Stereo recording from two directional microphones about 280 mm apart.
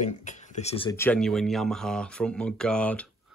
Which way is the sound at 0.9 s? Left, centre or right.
Centre.